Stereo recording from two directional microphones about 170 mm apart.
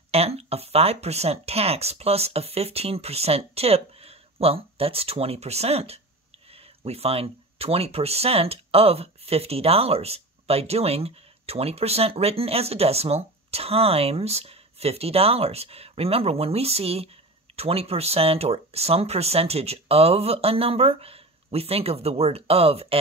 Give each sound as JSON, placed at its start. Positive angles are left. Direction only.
{"t": 0.1, "sound": "speech", "side_deg": -35}